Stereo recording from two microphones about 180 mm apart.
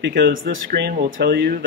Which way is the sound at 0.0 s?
85° right.